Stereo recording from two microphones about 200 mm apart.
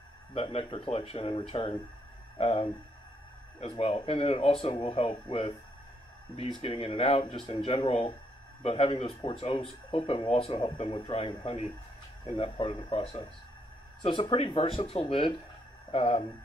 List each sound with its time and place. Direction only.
0.3 s speech: 30° left (ahead or behind)